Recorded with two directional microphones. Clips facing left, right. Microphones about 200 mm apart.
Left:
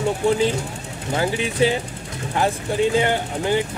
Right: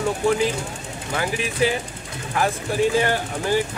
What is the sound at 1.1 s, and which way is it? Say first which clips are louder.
Speech: left 3 dB; 25° left (ahead or behind).